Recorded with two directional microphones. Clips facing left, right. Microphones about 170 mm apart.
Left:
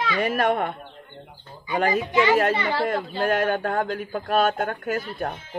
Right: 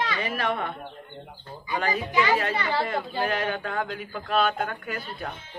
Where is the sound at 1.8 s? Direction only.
40° left (ahead or behind).